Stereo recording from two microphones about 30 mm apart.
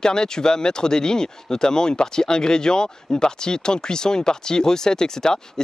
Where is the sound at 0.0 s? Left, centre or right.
Left.